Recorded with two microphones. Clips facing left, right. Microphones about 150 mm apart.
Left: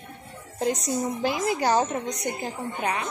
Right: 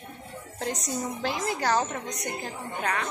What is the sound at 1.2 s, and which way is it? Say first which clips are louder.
A woman's voice: left 4 dB; 15° left (ahead or behind).